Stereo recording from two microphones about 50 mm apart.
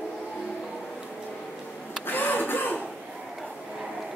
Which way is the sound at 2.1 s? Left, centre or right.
Left.